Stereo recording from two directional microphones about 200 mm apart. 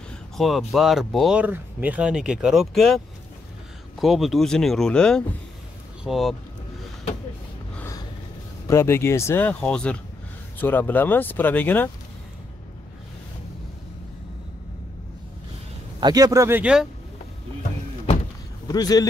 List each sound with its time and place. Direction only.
0.4 s speech: centre (ahead or behind)
4.0 s speech: centre (ahead or behind)
7.7 s gasp: 10° left (ahead or behind)
8.6 s speech: 15° left (ahead or behind)
16.0 s speech: 20° right (ahead or behind)
18.7 s speech: 20° left (ahead or behind)